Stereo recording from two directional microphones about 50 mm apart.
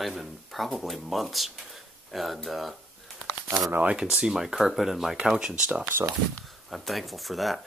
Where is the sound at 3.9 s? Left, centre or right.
Centre.